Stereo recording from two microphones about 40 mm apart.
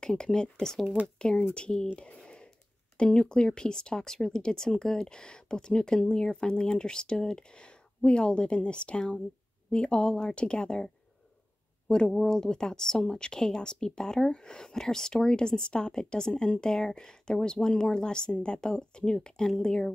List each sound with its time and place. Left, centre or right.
0.0 s speech: centre
2.0 s a sound: left
3.0 s speech: left
12.1 s speech: centre